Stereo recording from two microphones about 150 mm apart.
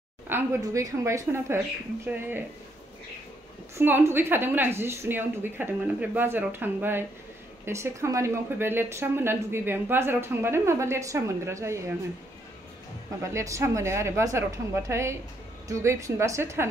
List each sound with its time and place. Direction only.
0.3 s a woman's voice: 15° right (ahead or behind)
3.7 s a woman's voice: 15° right (ahead or behind)
13.3 s a woman's voice: 20° right (ahead or behind)